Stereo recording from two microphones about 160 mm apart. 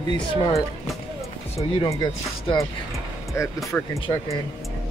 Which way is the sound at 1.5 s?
30° left (ahead or behind).